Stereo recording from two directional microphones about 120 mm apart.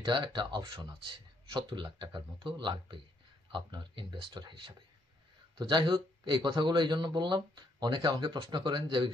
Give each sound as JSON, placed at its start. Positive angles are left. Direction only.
{"t": 0.0, "sound": "speech", "side_deg": -40}